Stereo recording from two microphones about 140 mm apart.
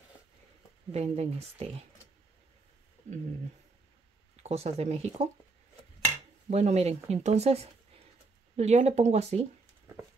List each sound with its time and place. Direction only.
0.9 s speech: 50° right (ahead or behind)
4.4 s speech: 50° right (ahead or behind)
6.5 s speech: 50° right (ahead or behind)